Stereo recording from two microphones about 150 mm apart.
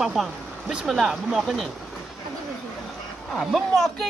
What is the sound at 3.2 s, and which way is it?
Speech, centre (ahead or behind).